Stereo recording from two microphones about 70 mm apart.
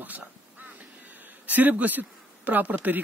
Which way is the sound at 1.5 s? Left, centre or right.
Right.